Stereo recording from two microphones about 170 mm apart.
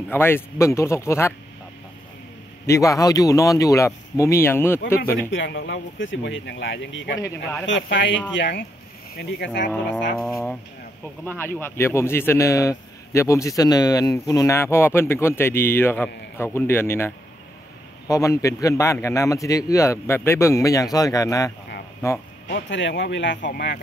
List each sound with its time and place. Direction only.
0.1 s speech: 15° left (ahead or behind)
2.6 s speech: 20° left (ahead or behind)
5.3 s speech: 90° left
7.2 s speech: 15° left (ahead or behind)
7.6 s speech: 90° left
9.7 s speech: centre (ahead or behind)
11.2 s a man's voice: 10° left (ahead or behind)
22.5 s speech: 90° left; by 23.8 s 75° left (ahead or behind)